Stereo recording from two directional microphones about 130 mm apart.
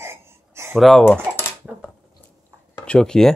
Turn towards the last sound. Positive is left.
turn(degrees=5)  # may be behind; listen again after turning